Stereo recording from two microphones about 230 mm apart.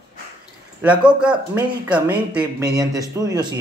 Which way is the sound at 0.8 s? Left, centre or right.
Centre.